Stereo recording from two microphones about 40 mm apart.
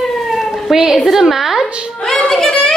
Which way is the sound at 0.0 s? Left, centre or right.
Centre.